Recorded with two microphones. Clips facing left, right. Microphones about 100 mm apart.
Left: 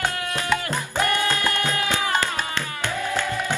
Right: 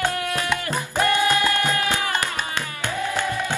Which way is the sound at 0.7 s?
15° right (ahead or behind).